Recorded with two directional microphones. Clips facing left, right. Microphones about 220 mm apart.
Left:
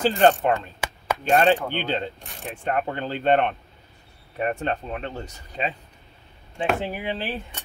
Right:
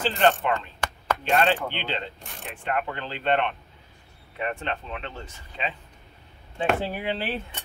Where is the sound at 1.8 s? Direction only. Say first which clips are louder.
Left 5 dB; 45° left (ahead or behind).